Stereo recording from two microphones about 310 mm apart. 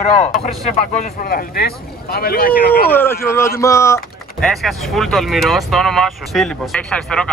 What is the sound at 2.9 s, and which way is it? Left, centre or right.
Speech, centre.